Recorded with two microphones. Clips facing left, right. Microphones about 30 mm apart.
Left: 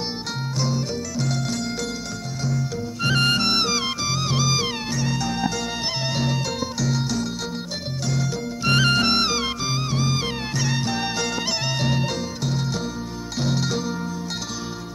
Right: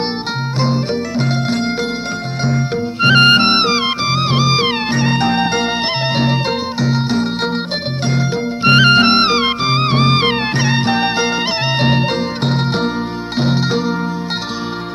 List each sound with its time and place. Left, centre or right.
0.6 s music: right
13.4 s music: right